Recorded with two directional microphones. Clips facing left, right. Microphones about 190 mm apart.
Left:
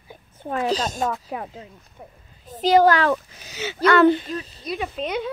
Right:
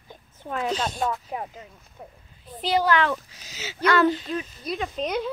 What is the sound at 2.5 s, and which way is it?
Speech, 45° left (ahead or behind).